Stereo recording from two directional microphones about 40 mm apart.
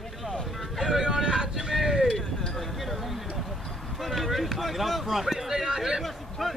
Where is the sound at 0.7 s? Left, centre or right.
Centre.